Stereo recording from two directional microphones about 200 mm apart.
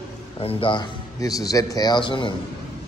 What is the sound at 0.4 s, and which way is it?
A man's voice, 30° left (ahead or behind).